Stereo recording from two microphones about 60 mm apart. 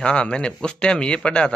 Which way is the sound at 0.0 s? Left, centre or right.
Centre.